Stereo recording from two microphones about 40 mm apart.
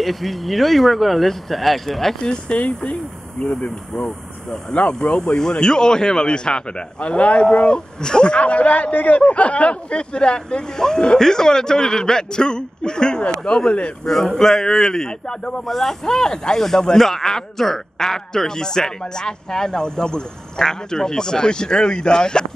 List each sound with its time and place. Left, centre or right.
0.0 s speech: centre
2.4 s speech: left
2.8 s speech: centre
8.4 s speech: left
14.0 s speech: centre
15.6 s speech: centre; by 22.5 s left